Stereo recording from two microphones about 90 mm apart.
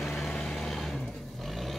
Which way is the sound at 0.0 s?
5° left (ahead or behind).